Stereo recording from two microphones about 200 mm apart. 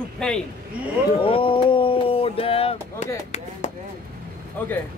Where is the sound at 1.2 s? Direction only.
25° left (ahead or behind).